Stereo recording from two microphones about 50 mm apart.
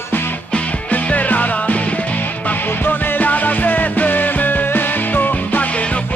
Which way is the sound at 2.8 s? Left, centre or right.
Left.